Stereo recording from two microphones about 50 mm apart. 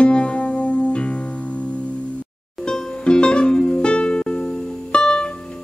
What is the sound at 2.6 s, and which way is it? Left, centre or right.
Music, centre.